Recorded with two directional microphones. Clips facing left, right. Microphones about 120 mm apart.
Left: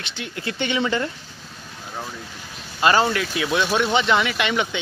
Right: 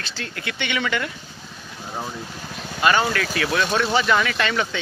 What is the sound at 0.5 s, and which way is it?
Speech, 30° left (ahead or behind).